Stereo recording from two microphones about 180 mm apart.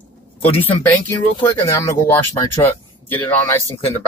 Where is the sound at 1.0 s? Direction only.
10° left (ahead or behind).